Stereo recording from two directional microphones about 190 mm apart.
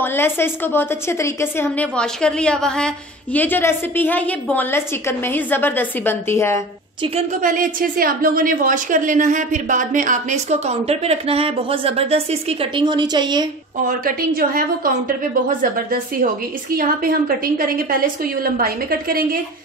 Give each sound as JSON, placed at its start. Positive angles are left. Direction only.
{"t": 0.0, "sound": "a woman's voice", "side_deg": 10}
{"t": 7.4, "sound": "a woman's voice", "side_deg": -45}
{"t": 13.8, "sound": "a woman's voice", "side_deg": -50}